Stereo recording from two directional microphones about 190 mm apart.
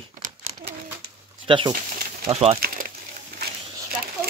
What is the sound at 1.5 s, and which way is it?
Speech, 25° right (ahead or behind).